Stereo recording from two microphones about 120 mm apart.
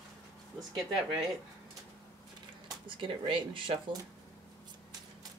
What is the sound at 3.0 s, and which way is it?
Speech, 45° right (ahead or behind).